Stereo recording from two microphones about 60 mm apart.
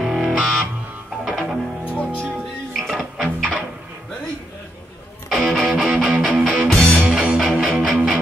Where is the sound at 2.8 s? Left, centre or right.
Centre.